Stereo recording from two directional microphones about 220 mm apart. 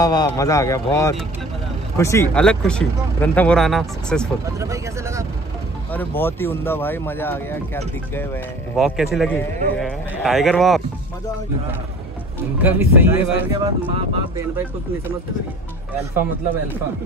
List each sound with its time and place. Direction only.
0.0 s speech: 15° left (ahead or behind)
4.6 s speech: 15° right (ahead or behind)
5.9 s speech: 10° left (ahead or behind)
8.7 s speech: centre (ahead or behind)
12.6 s speech: 10° right (ahead or behind)
13.6 s speech: 20° right (ahead or behind)